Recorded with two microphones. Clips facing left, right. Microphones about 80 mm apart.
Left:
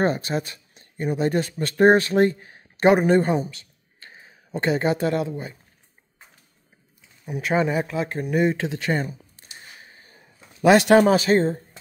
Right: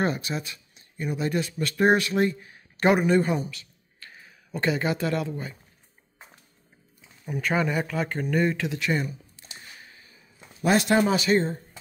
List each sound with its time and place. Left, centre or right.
0.0 s speech: left
2.8 s speech: left
3.1 s speech: left
7.2 s speech: centre
7.5 s speech: left
7.9 s speech: centre
8.5 s speech: left
9.8 s a sound: left
10.6 s speech: left
11.1 s speech: left